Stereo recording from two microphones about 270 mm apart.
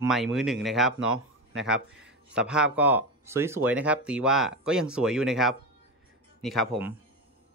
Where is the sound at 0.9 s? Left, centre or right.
Right.